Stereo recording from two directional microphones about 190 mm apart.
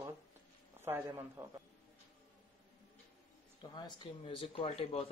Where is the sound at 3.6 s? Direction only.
25° left (ahead or behind).